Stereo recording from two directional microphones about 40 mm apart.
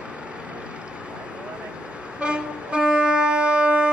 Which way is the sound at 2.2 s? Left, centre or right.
Right.